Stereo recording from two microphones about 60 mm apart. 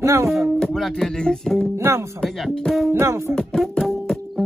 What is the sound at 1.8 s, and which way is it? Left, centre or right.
Music, right.